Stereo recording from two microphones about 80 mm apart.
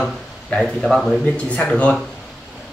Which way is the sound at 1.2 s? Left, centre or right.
Centre.